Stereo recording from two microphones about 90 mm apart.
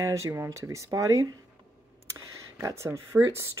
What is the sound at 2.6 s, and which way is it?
Speech, 30° right (ahead or behind).